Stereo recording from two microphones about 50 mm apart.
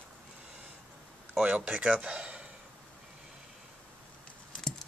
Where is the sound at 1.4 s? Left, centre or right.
Right.